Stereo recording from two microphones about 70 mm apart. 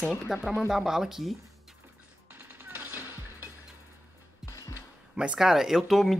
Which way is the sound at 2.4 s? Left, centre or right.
Right.